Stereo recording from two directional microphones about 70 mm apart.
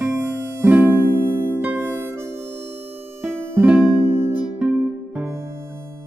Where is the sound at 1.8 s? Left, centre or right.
Right.